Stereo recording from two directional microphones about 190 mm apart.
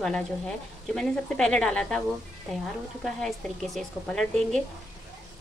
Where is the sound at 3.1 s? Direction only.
Centre (ahead or behind).